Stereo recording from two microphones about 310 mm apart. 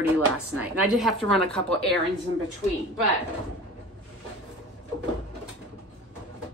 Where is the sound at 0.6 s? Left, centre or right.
Centre.